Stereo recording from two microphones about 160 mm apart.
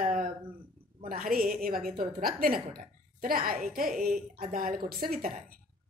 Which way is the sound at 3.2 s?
65° right (ahead or behind).